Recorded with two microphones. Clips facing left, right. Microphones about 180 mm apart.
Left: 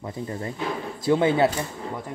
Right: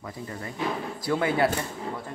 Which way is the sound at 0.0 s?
25° left (ahead or behind).